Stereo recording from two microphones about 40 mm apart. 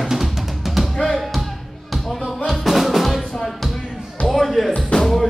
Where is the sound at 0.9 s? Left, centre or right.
Centre.